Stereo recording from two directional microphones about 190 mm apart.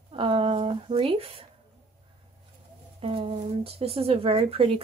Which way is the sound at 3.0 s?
30° right (ahead or behind).